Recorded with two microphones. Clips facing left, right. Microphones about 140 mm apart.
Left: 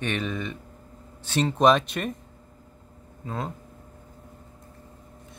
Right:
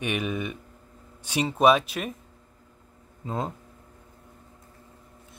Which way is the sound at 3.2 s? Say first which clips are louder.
Right 2 dB; 20° right (ahead or behind).